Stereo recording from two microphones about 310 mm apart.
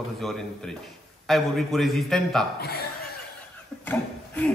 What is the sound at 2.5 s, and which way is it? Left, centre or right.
Speech, left.